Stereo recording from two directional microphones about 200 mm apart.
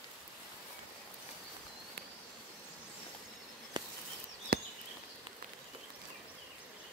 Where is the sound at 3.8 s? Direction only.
20° right (ahead or behind).